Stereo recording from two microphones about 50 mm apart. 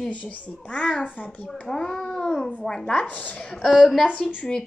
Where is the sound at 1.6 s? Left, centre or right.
Centre.